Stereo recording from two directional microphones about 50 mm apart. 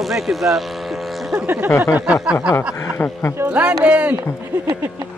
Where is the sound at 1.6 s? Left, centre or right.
Left.